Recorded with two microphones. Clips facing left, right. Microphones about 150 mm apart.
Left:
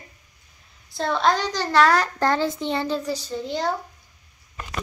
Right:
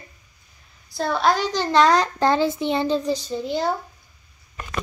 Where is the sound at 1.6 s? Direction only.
20° right (ahead or behind).